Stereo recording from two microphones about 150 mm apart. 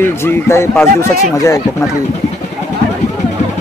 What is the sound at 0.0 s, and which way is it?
Speech, 15° left (ahead or behind).